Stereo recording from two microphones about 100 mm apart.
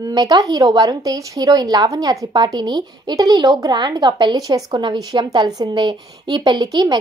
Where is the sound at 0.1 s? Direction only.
45° right (ahead or behind).